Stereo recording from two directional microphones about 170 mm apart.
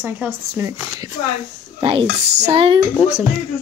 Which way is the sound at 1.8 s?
30° right (ahead or behind).